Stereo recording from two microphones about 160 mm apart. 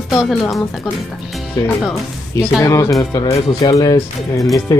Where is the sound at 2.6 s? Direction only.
20° left (ahead or behind).